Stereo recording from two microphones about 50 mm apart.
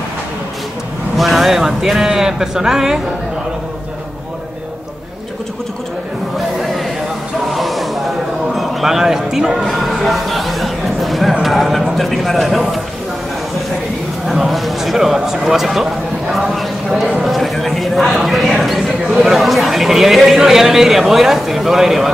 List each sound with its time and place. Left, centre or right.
1.1 s speech: centre
7.5 s a sound: centre
12.0 s a man's voice: centre
14.2 s a man's voice: centre